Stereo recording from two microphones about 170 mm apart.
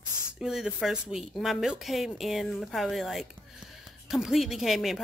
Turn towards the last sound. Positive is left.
turn(degrees=0)  # may be behind; listen again after turning